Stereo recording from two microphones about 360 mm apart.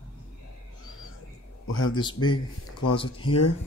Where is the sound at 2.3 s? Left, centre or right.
Left.